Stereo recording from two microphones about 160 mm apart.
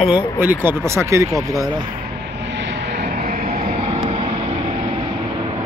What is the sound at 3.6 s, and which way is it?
Vehicle, 35° right (ahead or behind).